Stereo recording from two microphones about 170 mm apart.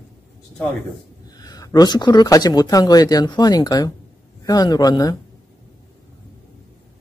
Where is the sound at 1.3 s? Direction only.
25° left (ahead or behind).